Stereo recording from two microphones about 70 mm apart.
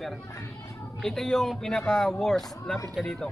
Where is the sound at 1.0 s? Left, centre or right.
Centre.